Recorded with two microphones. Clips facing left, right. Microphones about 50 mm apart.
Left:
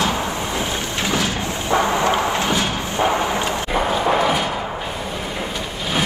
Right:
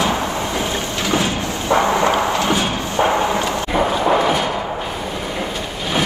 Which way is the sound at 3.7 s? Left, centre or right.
Centre.